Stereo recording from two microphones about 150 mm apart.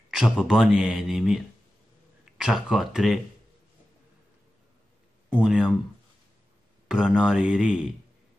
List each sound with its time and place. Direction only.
0.1 s speech: 5° right (ahead or behind)
5.3 s speech: 5° right (ahead or behind)
6.9 s speech: 5° right (ahead or behind)